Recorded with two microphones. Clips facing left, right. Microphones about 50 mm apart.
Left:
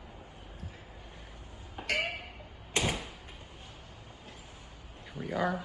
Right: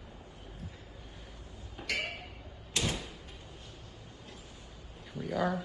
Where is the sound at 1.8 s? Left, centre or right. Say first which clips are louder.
Left 3 dB; left.